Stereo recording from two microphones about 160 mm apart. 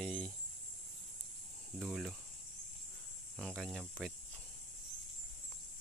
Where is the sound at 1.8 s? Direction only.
5° right (ahead or behind).